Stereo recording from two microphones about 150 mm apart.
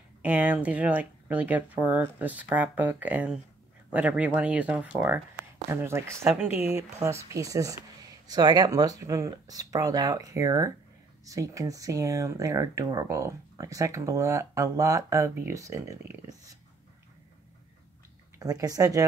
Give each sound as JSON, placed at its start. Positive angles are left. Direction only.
{"t": 0.2, "sound": "speech", "side_deg": -10}
{"t": 6.2, "sound": "speech", "side_deg": -5}
{"t": 6.5, "sound": "speech", "side_deg": 40}
{"t": 7.0, "sound": "speech", "side_deg": -20}
{"t": 18.4, "sound": "speech", "side_deg": -25}